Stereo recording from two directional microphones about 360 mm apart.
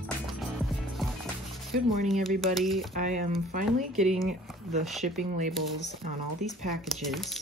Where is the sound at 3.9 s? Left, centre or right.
Centre.